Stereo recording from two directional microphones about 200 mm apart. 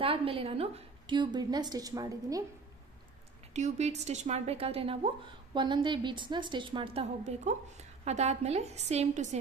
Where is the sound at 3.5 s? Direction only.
35° right (ahead or behind).